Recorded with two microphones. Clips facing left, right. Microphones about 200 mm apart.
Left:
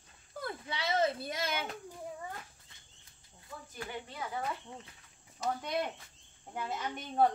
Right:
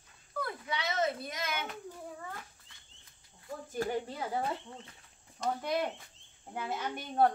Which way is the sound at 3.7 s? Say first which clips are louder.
Right 10 dB; 40° right (ahead or behind).